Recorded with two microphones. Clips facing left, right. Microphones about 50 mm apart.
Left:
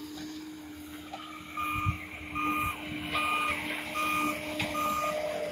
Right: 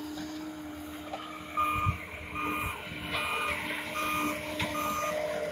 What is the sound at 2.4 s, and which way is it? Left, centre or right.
Reversing beeps, centre.